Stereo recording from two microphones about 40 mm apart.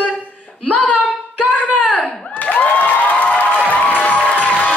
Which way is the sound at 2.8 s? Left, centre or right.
Left.